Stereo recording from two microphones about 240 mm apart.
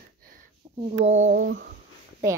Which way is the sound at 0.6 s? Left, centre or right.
Centre.